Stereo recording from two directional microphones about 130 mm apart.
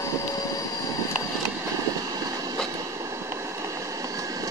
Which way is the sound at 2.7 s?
25° right (ahead or behind).